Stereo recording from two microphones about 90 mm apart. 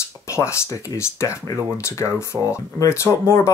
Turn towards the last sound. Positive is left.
turn(degrees=30)  # may be behind; listen again after turning